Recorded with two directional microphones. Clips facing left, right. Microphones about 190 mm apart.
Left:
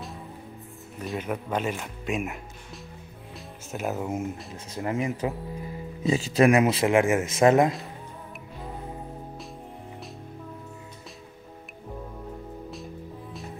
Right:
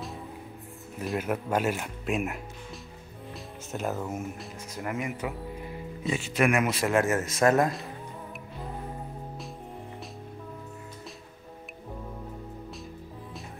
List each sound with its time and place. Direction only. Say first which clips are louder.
0.9 s speech: right 1 dB; 5° right (ahead or behind)
3.7 s speech: left 1 dB; 5° left (ahead or behind)
4.0 s speech: left 4 dB; 15° left (ahead or behind)
4.7 s speech: left 5 dB; 30° left (ahead or behind)
6.9 s speech: left 4 dB; 15° left (ahead or behind)